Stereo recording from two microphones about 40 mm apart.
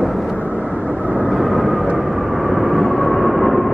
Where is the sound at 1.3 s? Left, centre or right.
Centre.